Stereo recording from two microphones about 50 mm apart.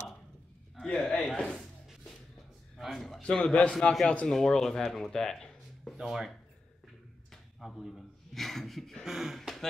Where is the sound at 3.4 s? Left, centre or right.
Left.